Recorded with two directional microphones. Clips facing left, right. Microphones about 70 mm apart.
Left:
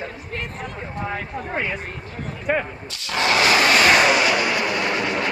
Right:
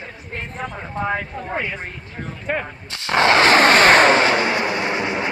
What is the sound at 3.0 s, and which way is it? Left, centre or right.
Vehicle, right.